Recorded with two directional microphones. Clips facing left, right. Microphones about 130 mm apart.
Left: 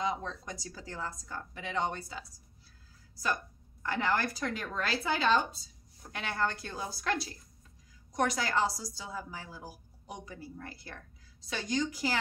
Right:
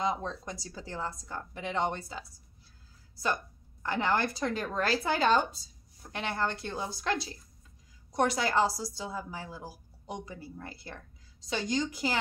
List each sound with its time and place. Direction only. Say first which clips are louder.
0.0 s a woman's voice: right 2 dB; 30° right (ahead or behind)
3.8 s a woman's voice: right 2 dB; 25° right (ahead or behind); by 5.4 s 40° right (ahead or behind)
6.1 s a woman's voice: right 1 dB; 25° right (ahead or behind)